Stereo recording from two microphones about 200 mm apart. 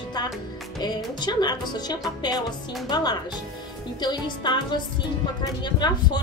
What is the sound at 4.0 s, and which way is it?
A woman's voice, 20° left (ahead or behind).